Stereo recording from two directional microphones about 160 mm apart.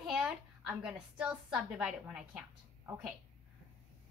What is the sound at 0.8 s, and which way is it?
A woman's voice, 5° right (ahead or behind).